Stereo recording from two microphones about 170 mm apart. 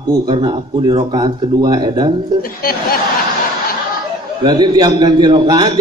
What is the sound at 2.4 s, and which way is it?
Speech, 60° left (ahead or behind).